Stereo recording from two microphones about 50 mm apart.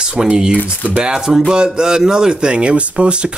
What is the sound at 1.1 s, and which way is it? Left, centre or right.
Speech, centre.